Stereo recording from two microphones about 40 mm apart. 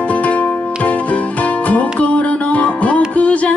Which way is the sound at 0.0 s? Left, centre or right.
Left.